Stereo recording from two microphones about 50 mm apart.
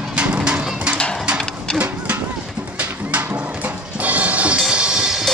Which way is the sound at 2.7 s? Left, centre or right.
Right.